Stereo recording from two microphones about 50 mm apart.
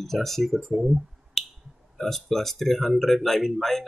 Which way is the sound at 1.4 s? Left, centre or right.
Centre.